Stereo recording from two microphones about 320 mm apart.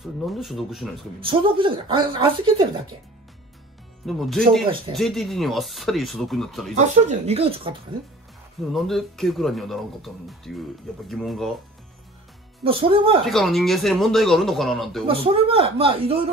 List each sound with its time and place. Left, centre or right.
0.0 s speech: centre
1.2 s speech: centre
4.0 s speech: centre
6.7 s speech: right
8.7 s speech: centre
12.6 s speech: centre
13.2 s speech: centre
15.0 s speech: centre